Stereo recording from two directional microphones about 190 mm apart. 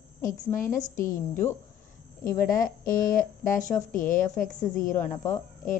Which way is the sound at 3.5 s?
40° left (ahead or behind).